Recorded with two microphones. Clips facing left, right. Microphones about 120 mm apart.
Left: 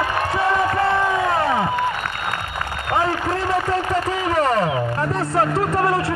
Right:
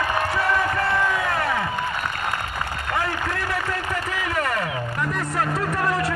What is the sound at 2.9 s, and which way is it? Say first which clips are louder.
Applause: left 6 dB; 20° left (ahead or behind).